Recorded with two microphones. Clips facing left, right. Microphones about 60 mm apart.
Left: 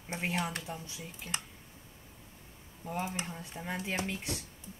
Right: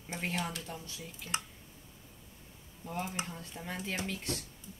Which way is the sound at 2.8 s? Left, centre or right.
Centre.